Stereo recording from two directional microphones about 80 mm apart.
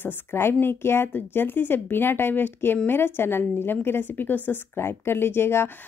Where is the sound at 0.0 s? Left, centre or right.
Left.